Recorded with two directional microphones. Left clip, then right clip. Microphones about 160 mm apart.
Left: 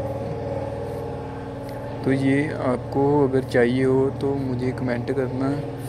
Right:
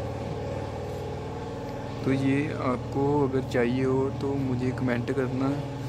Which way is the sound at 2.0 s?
5° left (ahead or behind).